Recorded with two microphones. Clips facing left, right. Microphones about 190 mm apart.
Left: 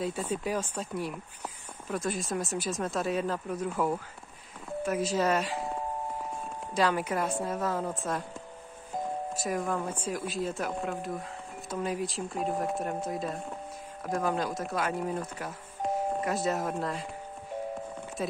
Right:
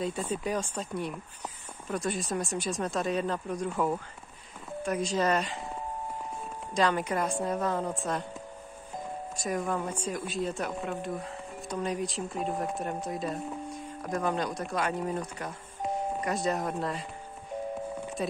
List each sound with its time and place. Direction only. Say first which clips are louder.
0.0 s speech: even; 5° left (ahead or behind)
6.7 s speech: even; 5° left (ahead or behind)
9.3 s speech: right 2 dB; centre (ahead or behind)
18.2 s speech: even; centre (ahead or behind)